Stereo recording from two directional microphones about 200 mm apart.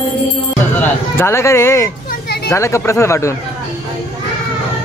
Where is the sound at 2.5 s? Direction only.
15° left (ahead or behind).